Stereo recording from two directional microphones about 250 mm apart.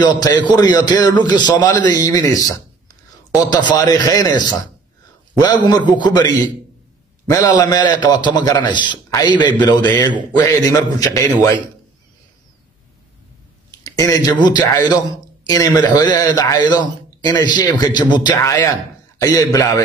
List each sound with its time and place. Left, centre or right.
0.0 s a man's voice: centre
13.8 s a man's voice: centre